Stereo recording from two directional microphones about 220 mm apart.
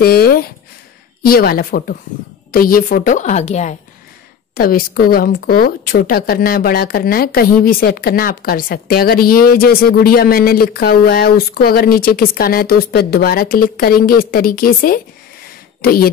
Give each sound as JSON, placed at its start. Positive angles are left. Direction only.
{"t": 0.0, "sound": "a woman's voice", "side_deg": 45}
{"t": 4.6, "sound": "a woman's voice", "side_deg": 40}